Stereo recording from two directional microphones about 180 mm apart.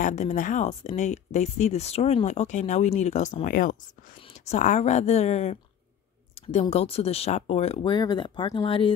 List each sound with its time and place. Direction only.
0.0 s speech: 40° left (ahead or behind)